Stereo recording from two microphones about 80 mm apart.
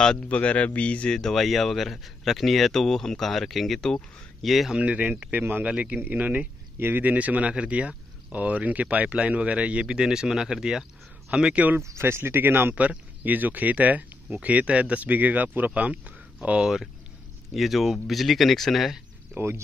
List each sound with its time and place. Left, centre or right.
0.0 s speech: centre
4.7 s speech: centre
11.8 s speech: right; by 18.9 s centre
19.3 s speech: right